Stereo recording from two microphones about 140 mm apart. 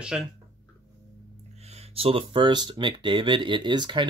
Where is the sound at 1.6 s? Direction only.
50° right (ahead or behind); by 4.0 s 30° right (ahead or behind).